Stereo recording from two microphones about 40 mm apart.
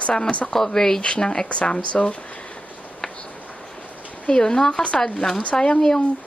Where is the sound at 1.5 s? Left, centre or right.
Left.